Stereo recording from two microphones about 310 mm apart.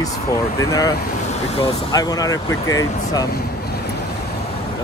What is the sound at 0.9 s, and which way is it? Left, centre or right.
Speech, left.